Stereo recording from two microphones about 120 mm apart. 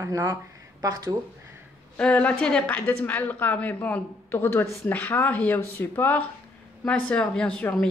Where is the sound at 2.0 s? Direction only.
10° left (ahead or behind).